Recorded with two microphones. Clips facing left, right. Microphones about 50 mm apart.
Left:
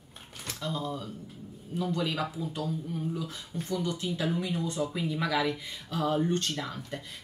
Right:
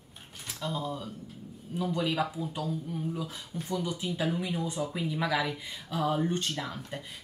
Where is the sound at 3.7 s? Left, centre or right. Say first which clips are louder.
Even; centre.